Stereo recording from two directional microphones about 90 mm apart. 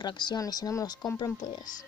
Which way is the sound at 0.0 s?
55° left (ahead or behind).